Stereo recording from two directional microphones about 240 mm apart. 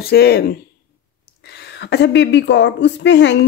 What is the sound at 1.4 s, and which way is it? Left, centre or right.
A woman's voice, left.